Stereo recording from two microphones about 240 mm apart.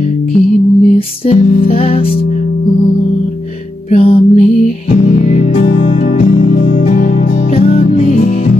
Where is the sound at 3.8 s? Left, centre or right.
Left.